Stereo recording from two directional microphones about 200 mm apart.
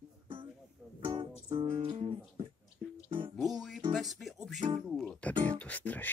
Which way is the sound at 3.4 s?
Centre (ahead or behind).